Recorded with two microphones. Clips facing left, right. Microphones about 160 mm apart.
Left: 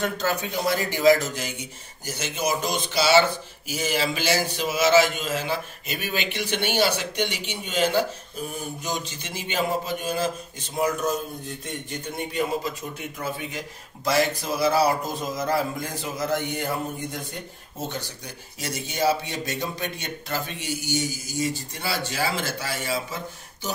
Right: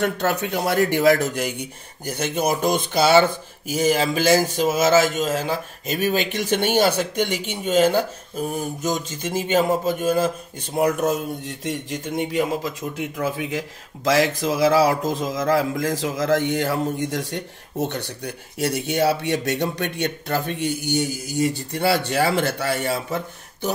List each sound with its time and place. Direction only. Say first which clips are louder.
0.0 s speech: right 4 dB; 65° right (ahead or behind)
10.8 s speech: right 4 dB; 80° right; by 22.9 s 60° right (ahead or behind)